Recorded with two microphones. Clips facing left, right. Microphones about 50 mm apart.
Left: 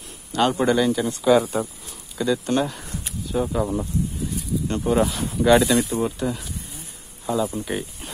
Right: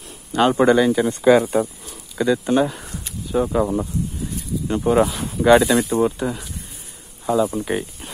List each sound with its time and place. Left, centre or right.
0.3 s speech: centre